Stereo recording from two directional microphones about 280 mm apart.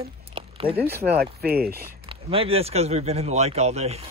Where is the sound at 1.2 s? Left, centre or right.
Right.